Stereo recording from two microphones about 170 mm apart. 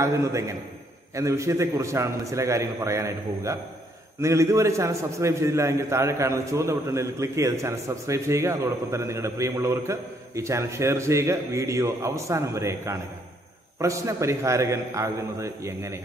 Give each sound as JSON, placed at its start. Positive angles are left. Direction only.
{"t": 0.0, "sound": "a man's voice", "side_deg": -15}